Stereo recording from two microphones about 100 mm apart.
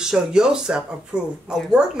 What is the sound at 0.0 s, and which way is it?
Speech, 5° right (ahead or behind).